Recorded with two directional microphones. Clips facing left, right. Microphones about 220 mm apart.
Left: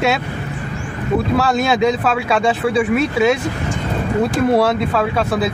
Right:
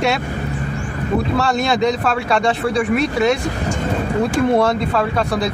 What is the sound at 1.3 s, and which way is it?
Speech, 5° left (ahead or behind).